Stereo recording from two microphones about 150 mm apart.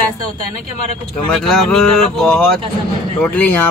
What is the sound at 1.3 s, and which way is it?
Speech, 5° left (ahead or behind).